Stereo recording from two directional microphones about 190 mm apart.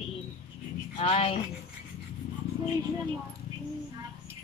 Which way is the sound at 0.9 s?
30° left (ahead or behind).